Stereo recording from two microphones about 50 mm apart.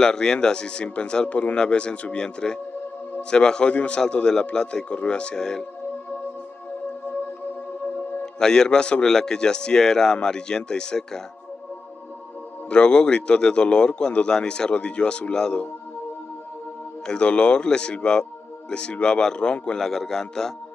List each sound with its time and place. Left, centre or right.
0.0 s a man's voice: centre
8.4 s a man's voice: centre
12.6 s a man's voice: left
17.0 s a man's voice: centre